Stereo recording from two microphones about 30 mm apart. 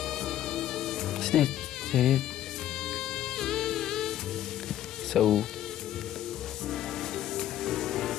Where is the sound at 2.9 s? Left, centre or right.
Centre.